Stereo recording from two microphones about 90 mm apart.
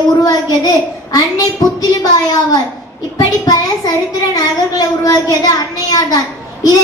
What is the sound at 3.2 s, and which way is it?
Speech, 45° left (ahead or behind).